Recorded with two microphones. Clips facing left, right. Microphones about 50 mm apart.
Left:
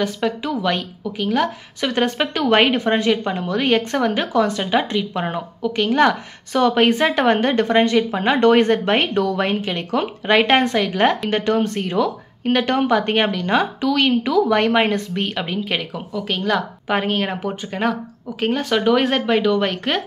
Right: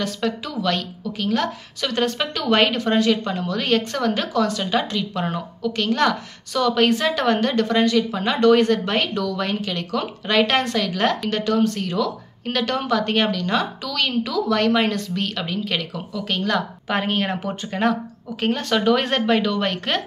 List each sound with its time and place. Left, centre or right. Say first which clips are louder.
0.0 s speech: left 3 dB; centre
1.8 s a woman's voice: left 3 dB; left
6.5 s a woman's voice: left 3 dB; left
16.3 s speech: left 2 dB; centre